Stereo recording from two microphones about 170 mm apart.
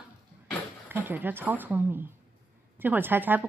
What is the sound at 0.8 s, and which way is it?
Speech, 10° right (ahead or behind).